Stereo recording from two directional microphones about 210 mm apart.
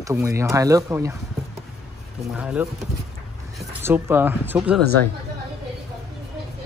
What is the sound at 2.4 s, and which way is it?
Speech, 5° right (ahead or behind).